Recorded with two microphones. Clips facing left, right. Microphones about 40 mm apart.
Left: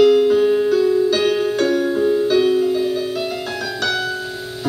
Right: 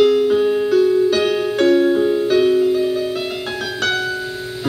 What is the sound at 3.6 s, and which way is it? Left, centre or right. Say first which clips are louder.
Music: right 2 dB; right.